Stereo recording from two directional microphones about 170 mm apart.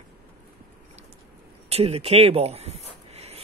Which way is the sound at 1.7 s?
35° right (ahead or behind).